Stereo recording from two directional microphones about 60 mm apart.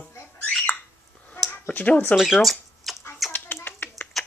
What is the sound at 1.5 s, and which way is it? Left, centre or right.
Speech, left.